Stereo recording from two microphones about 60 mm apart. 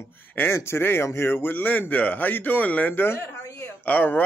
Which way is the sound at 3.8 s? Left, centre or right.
Left.